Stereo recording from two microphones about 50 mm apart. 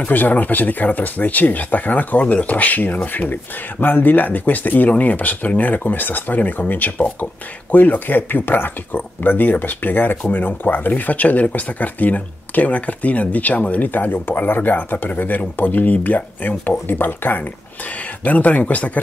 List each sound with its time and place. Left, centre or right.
0.0 s speech: left